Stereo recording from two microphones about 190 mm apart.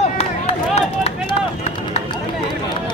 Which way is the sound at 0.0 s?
35° left (ahead or behind).